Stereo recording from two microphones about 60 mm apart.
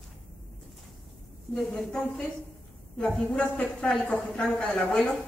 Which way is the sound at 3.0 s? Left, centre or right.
Centre.